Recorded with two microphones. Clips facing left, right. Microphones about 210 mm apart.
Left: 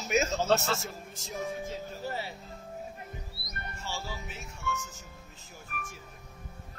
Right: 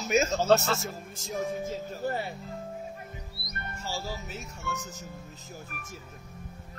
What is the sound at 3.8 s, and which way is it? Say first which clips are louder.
Speech: right 3 dB; 40° right (ahead or behind).